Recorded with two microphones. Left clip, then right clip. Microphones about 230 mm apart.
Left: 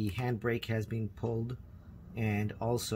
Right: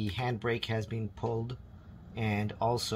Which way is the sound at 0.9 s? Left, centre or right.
Right.